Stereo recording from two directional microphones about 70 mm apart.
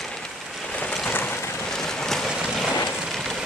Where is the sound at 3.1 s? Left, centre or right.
Centre.